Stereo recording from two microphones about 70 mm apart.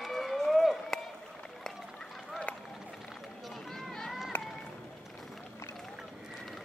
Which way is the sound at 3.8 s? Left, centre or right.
Centre.